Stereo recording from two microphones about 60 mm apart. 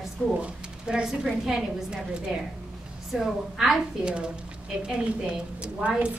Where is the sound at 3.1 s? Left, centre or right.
Centre.